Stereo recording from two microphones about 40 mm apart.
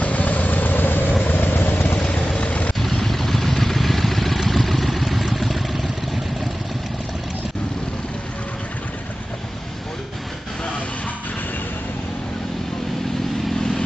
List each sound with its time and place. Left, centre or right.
0.0 s vehicle: left
2.3 s vehicle: left
2.8 s vehicle: centre
13.6 s vehicle: centre